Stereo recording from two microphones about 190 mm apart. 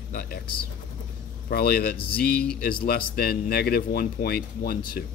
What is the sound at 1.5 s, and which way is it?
Speech, 55° left (ahead or behind).